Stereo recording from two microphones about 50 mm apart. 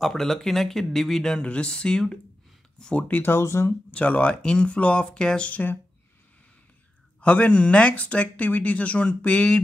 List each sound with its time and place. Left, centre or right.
0.0 s speech: centre
1.4 s speech: left
3.2 s speech: left
3.9 s speech: left
5.5 s speech: left
7.2 s speech: left